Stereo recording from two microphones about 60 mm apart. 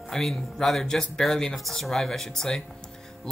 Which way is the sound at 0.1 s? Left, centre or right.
Centre.